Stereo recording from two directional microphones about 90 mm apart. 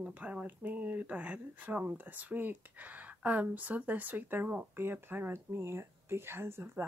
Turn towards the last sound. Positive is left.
turn(degrees=-25)  # may be behind; listen again after turning